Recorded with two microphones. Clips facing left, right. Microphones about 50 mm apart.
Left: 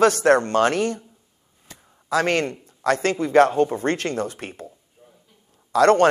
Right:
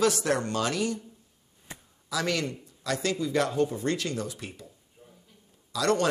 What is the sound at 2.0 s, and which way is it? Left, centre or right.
A man's voice, left.